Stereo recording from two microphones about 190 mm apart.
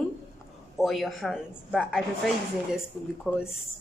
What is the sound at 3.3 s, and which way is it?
Speech, 5° left (ahead or behind).